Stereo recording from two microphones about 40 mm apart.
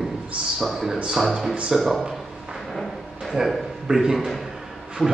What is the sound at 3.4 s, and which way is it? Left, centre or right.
Speech, centre.